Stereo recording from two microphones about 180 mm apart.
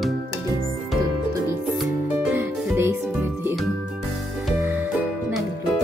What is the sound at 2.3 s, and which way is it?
Music, 15° right (ahead or behind).